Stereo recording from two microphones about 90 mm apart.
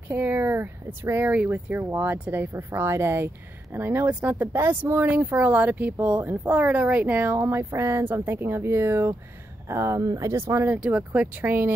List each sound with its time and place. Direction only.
0.1 s speech: 20° right (ahead or behind)
10.8 s speech: 10° right (ahead or behind)